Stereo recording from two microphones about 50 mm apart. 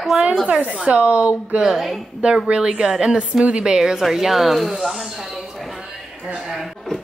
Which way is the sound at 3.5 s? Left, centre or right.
Right.